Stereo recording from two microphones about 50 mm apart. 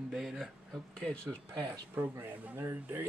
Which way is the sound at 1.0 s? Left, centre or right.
Left.